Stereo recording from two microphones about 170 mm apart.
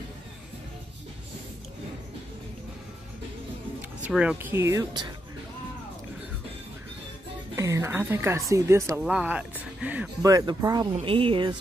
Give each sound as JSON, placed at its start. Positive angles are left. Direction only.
{"t": 4.0, "sound": "speech", "side_deg": -5}
{"t": 7.5, "sound": "speech", "side_deg": -15}
{"t": 9.0, "sound": "speech", "side_deg": -5}
{"t": 10.2, "sound": "speech", "side_deg": -20}